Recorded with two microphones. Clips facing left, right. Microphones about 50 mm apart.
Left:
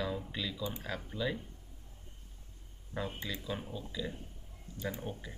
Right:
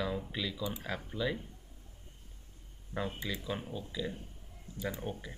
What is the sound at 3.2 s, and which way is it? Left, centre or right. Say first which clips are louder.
Speech: right 2 dB; centre.